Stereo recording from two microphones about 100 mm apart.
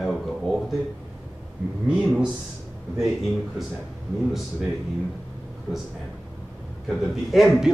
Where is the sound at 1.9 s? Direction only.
5° right (ahead or behind).